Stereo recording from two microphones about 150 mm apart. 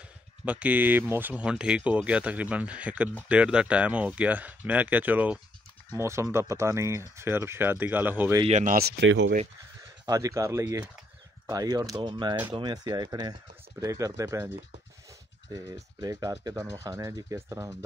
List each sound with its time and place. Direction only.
0.5 s speech: 10° right (ahead or behind)
8.5 s speech: 55° right (ahead or behind)
10.0 s speech: 20° right (ahead or behind)
15.5 s speech: 25° right (ahead or behind)